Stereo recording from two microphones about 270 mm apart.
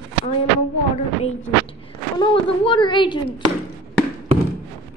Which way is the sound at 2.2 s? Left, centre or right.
Centre.